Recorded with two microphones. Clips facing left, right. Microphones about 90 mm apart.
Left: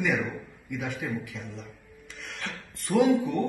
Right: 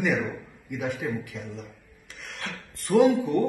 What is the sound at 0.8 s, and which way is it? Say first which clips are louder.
Speech: right 4 dB; 55° right (ahead or behind).